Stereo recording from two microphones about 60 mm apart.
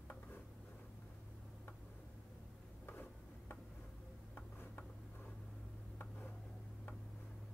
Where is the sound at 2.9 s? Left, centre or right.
Left.